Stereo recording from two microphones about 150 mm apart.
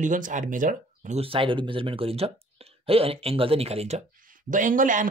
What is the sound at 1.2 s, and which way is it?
Speech, 35° right (ahead or behind).